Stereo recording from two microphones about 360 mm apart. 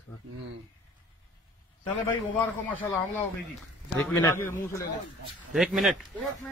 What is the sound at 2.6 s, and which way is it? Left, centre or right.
A man's voice, centre.